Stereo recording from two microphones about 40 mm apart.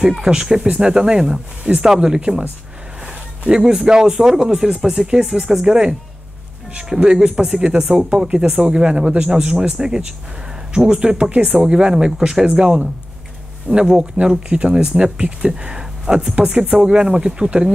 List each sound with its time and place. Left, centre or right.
0.2 s speech: right
3.4 s speech: centre
6.9 s speech: centre
13.7 s speech: right
14.2 s speech: right
14.5 s speech: right